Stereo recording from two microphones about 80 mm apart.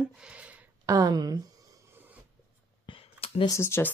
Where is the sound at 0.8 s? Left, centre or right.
Right.